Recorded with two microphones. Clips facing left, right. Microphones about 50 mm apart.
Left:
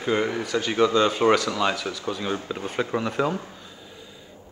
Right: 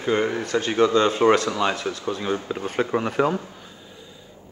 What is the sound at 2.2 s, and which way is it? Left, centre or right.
Speech, centre.